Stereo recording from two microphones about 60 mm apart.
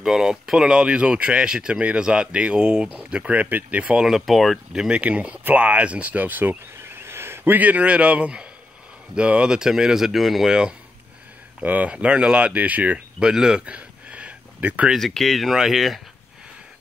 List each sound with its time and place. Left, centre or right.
0.0 s speech: centre; by 4.0 s right
4.0 s speech: centre
4.7 s speech: centre
6.8 s a sound: right; by 8.5 s centre
9.1 s speech: centre
11.6 s speech: right
13.2 s speech: centre
13.7 s a sound: right
15.0 s speech: centre